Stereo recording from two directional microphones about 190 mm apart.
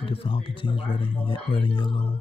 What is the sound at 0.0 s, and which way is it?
Speech, 30° left (ahead or behind).